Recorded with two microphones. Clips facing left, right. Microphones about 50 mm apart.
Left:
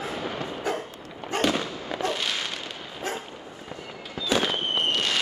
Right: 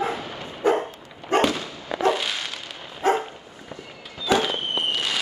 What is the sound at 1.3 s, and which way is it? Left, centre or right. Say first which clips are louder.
Fireworks: right 6 dB; right.